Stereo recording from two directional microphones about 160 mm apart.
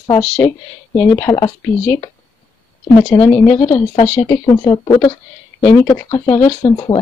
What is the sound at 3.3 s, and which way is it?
Speech, 15° left (ahead or behind).